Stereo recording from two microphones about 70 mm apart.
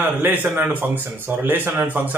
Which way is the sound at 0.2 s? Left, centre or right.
Right.